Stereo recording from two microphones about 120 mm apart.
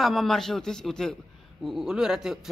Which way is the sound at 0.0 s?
Centre (ahead or behind).